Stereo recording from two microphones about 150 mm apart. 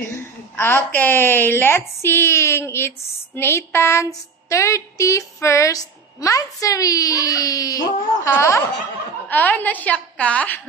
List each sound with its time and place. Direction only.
0.6 s a woman's voice: 15° left (ahead or behind)